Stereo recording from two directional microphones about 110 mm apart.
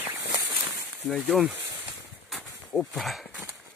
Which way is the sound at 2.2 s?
Centre (ahead or behind).